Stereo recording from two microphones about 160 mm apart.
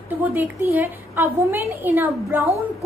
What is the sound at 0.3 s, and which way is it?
A woman's voice, 10° right (ahead or behind).